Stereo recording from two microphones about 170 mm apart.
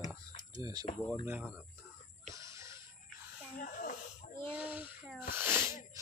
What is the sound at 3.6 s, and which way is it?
Wheeze, 50° left (ahead or behind).